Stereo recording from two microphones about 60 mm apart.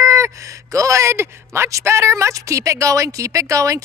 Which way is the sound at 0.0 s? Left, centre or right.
Right.